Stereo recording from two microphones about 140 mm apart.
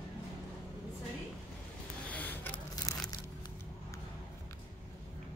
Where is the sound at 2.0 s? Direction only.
10° left (ahead or behind).